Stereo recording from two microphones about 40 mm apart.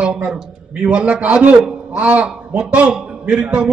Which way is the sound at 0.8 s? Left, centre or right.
Right.